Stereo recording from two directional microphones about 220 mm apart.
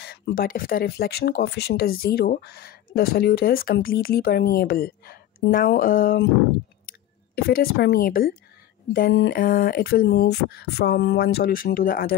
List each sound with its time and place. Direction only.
0.0 s speech: 50° left (ahead or behind)
7.3 s speech: 45° left (ahead or behind)